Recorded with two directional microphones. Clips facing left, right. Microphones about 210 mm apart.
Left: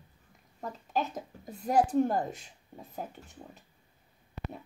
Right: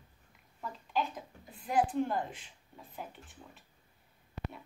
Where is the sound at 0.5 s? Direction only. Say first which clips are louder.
Left 2 dB; 40° left (ahead or behind).